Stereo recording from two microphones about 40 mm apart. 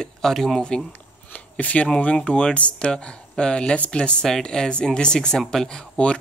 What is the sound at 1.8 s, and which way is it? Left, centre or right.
Speech, left.